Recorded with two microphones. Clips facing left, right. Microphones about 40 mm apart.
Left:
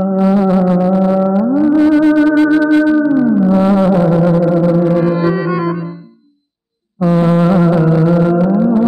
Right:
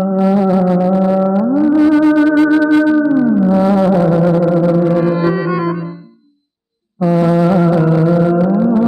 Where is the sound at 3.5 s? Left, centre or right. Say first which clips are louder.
Even; left.